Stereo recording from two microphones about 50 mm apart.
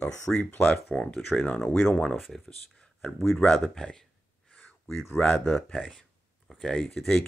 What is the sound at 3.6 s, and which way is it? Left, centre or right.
Speech, centre.